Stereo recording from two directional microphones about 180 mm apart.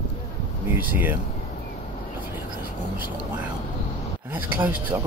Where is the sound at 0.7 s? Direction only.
10° right (ahead or behind).